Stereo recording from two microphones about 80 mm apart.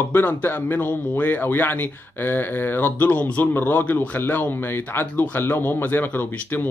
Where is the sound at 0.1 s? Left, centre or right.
Left.